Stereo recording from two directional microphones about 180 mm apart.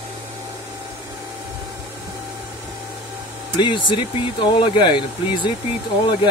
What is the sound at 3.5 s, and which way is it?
Speech, 25° left (ahead or behind).